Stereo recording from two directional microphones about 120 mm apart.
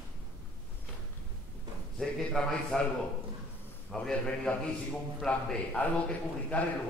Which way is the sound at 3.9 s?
5° left (ahead or behind).